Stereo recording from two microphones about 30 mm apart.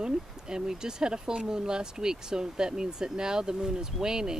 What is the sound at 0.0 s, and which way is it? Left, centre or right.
Speech, right.